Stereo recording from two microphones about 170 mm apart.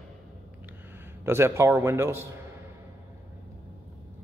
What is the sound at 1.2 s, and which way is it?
A man's voice, 15° right (ahead or behind).